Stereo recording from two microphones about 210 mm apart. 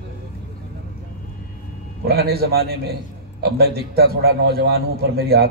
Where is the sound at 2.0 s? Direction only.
50° right (ahead or behind).